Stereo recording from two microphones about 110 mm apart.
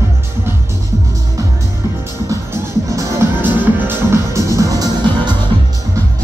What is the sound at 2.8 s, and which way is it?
Music, 30° right (ahead or behind).